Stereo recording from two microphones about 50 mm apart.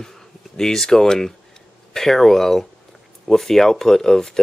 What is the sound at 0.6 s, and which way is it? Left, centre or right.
Speech, centre.